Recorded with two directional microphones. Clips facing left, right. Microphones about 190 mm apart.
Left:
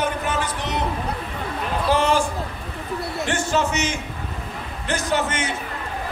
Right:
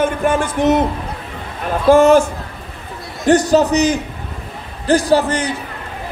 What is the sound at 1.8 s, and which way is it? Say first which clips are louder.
Speech: right 11 dB; 45° right (ahead or behind).